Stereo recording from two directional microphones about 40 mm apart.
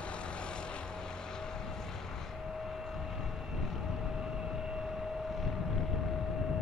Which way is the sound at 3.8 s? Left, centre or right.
Centre.